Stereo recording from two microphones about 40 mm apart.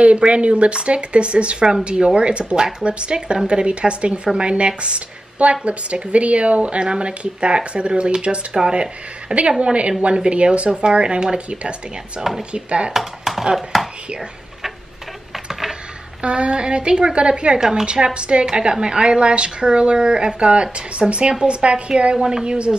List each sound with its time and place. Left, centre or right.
0.0 s a woman's voice: right
12.2 s speech: centre
12.5 s a woman's voice: right
12.9 s a sound: centre
13.6 s speech: centre
16.2 s a woman's voice: right
17.6 s speech: centre
17.8 s a woman's voice: right